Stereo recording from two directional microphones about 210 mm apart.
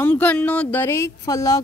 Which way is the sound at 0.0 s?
10° left (ahead or behind).